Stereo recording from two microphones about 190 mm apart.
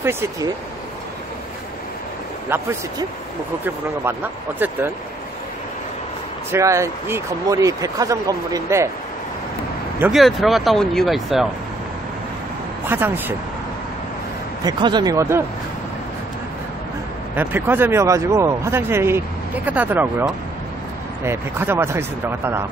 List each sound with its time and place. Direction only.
0.0 s speech: 15° right (ahead or behind)
2.5 s speech: 10° right (ahead or behind)
6.5 s speech: 15° right (ahead or behind)
9.9 s speech: 5° right (ahead or behind)
12.8 s speech: 10° right (ahead or behind)
14.6 s speech: 20° right (ahead or behind)
17.4 s speech: 10° right (ahead or behind)